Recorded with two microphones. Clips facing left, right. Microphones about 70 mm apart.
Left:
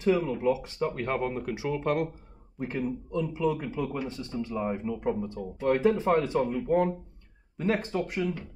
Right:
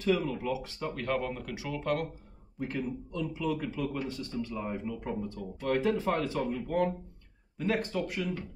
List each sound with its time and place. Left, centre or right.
0.0 s speech: left